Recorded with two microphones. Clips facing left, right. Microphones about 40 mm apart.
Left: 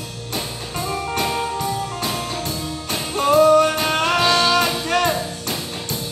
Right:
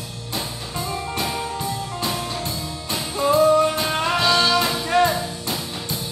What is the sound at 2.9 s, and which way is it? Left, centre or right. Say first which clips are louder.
Music: left 2 dB; left.